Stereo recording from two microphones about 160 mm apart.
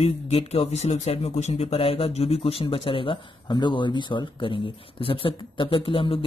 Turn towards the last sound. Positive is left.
turn(degrees=35)  # may be behind; listen again after turning